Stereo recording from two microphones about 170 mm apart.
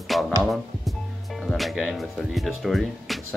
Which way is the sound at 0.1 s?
Centre (ahead or behind).